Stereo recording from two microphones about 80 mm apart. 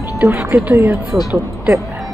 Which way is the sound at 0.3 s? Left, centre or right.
Right.